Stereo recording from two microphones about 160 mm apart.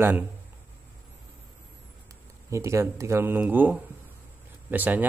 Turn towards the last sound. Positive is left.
turn(degrees=-10)  # may be behind; listen again after turning